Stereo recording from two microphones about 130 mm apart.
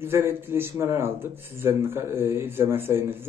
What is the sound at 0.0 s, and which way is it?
Speech, 15° right (ahead or behind).